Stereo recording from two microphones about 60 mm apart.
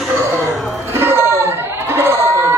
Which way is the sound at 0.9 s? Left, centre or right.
Right.